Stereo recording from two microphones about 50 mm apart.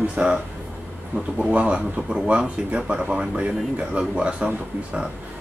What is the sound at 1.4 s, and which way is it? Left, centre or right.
Speech, right.